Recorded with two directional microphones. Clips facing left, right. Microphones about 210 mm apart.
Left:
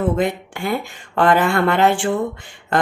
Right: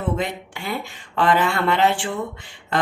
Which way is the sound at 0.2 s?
50° left (ahead or behind).